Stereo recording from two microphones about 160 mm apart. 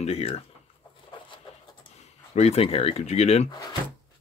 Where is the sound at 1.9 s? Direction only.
45° left (ahead or behind).